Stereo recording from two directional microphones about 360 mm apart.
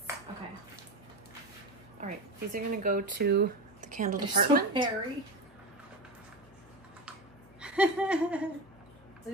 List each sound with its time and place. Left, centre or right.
2.0 s speech: right
7.6 s laughter: centre